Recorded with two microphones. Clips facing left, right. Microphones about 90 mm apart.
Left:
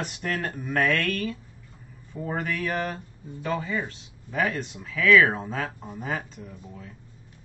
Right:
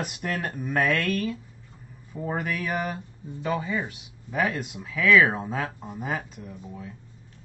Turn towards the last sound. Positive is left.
turn(degrees=-10)  # may be behind; listen again after turning